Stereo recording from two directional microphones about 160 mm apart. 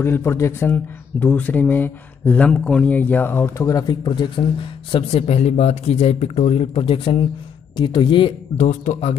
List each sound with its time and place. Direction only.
0.0 s speech: 15° left (ahead or behind)
4.9 s speech: 40° left (ahead or behind)
8.5 s speech: 45° left (ahead or behind)